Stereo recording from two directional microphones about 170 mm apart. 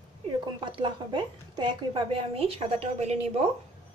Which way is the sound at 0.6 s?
30° right (ahead or behind).